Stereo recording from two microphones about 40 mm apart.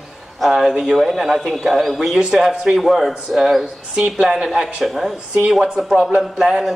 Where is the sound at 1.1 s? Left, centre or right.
Centre.